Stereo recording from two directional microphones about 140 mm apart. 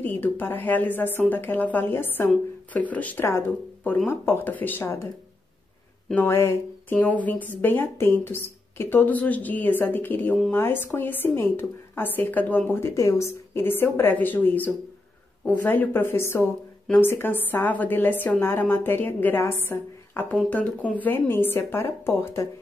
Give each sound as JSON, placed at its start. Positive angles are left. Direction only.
{"t": 0.0, "sound": "speech", "side_deg": 15}
{"t": 6.0, "sound": "speech", "side_deg": 15}